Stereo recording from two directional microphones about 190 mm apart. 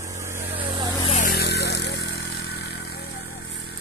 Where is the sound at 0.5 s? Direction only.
25° right (ahead or behind).